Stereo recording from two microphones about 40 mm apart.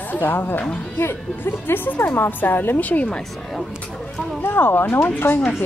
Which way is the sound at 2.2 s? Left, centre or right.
Left.